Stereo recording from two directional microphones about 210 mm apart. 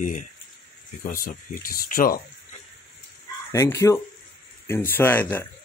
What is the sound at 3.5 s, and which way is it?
Speech, 15° left (ahead or behind).